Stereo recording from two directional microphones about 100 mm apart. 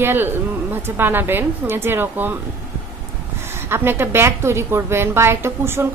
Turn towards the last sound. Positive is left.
turn(degrees=-25)  # may be behind; listen again after turning